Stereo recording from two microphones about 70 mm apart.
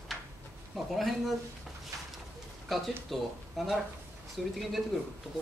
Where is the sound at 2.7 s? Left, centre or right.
Centre.